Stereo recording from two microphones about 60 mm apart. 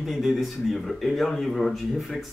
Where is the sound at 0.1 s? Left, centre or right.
Centre.